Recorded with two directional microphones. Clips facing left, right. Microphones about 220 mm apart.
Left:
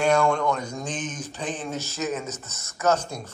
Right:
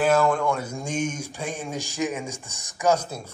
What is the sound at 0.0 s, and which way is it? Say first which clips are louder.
A man's voice: right 1 dB; 5° right (ahead or behind).